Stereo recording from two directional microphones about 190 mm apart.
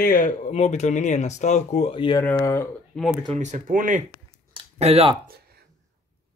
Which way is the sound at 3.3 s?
40° right (ahead or behind).